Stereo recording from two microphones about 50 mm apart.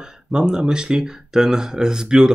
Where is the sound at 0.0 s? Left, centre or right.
Centre.